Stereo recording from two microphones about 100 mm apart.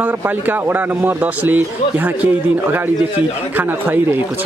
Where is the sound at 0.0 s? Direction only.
20° right (ahead or behind).